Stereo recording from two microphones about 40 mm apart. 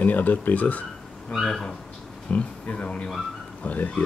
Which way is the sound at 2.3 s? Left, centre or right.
Left.